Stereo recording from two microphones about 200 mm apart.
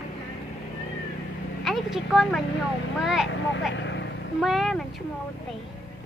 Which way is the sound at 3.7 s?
65° left (ahead or behind).